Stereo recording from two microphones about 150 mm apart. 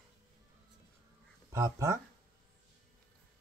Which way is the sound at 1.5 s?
20° right (ahead or behind).